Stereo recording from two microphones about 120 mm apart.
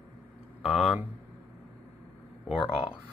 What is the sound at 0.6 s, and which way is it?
Speech, 5° right (ahead or behind).